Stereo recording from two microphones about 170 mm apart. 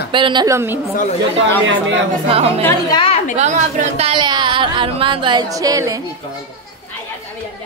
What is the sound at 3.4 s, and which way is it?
Speech, 40° right (ahead or behind).